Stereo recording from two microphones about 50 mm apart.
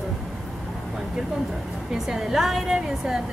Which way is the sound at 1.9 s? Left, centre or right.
Centre.